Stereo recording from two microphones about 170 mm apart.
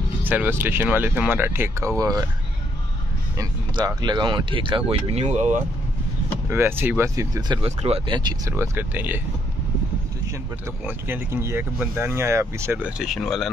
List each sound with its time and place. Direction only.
0.2 s speech: 10° right (ahead or behind)
3.3 s speech: 25° right (ahead or behind); by 5.6 s 40° right (ahead or behind)
6.5 s speech: 15° right (ahead or behind)
8.5 s speech: 15° right (ahead or behind)
10.9 s speech: 15° right (ahead or behind)